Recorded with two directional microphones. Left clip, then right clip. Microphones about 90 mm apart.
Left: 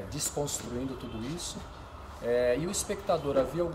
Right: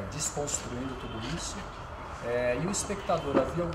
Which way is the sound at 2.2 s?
25° right (ahead or behind).